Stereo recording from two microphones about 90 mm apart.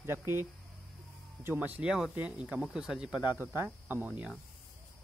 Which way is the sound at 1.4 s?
20° right (ahead or behind).